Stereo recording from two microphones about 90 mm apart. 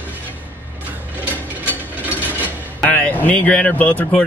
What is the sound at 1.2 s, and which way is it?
Mechanisms, 20° left (ahead or behind).